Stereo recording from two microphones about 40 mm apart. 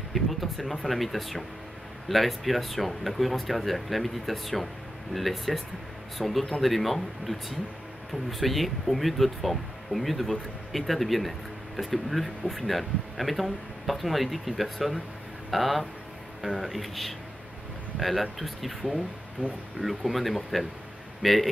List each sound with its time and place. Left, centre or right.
0.1 s speech: centre
19.4 s speech: right
20.1 s speech: centre